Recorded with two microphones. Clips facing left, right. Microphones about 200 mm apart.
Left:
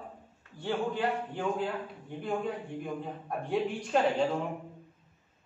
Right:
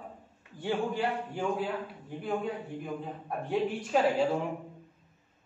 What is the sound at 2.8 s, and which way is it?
A man's voice, centre (ahead or behind).